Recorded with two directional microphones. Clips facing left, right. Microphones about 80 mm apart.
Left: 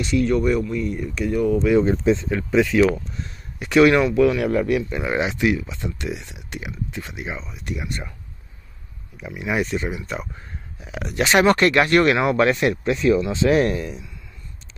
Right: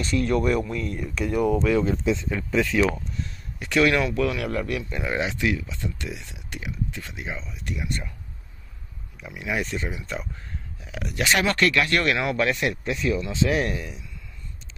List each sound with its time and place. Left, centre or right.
0.0 s speech: centre
1.8 s speech: left
2.5 s speech: centre
9.2 s speech: left
10.8 s speech: left